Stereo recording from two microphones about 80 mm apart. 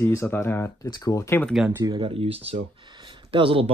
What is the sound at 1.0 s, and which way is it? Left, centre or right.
Speech, left.